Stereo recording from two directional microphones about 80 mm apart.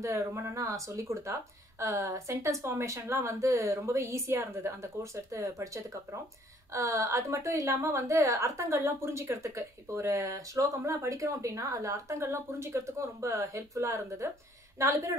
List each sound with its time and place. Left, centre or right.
0.0 s a woman's voice: right